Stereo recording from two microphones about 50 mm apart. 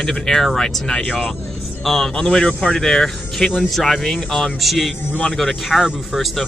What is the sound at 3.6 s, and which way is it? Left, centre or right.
Speech, centre.